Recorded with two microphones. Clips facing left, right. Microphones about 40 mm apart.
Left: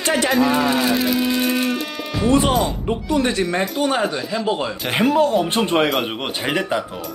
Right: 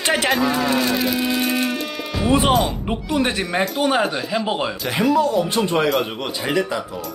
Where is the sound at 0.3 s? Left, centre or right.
Centre.